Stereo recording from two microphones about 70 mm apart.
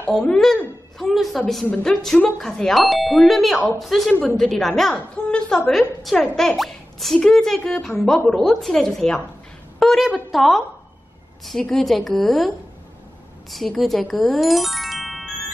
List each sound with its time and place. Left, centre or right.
0.1 s a woman's voice: centre
4.9 s a woman's voice: centre
5.7 s speech: centre
7.2 s a woman's voice: centre